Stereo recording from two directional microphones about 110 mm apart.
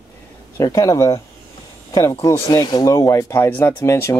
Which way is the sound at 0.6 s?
30° left (ahead or behind).